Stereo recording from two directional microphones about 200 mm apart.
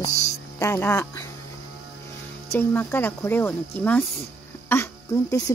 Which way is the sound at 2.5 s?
10° left (ahead or behind).